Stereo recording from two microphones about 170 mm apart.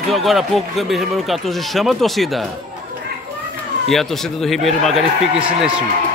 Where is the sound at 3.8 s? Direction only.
Centre (ahead or behind).